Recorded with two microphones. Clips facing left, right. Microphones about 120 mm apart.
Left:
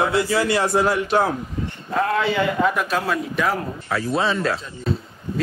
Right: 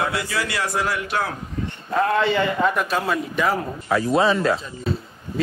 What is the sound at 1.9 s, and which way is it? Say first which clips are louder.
A man's voice: right 1 dB; centre (ahead or behind).